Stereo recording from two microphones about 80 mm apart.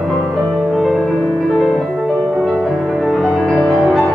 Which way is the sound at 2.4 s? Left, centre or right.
Centre.